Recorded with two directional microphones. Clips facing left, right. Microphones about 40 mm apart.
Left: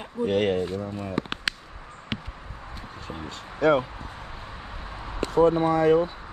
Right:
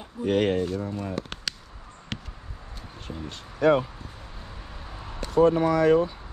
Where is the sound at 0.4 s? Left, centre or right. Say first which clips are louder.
Right 2 dB; left.